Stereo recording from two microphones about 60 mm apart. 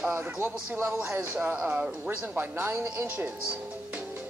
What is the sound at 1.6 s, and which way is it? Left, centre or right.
Speech, centre.